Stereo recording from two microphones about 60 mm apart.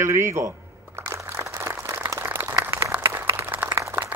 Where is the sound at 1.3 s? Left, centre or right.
Right.